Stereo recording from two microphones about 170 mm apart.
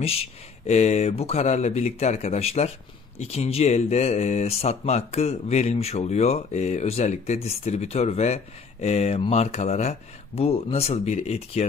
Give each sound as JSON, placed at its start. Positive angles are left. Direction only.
{"t": 0.7, "sound": "speech", "side_deg": 40}